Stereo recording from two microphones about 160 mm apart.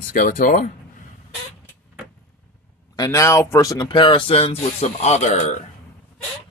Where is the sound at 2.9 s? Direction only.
20° left (ahead or behind); by 5.5 s 45° left (ahead or behind).